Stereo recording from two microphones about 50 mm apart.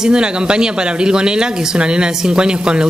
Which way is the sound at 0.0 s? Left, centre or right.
Centre.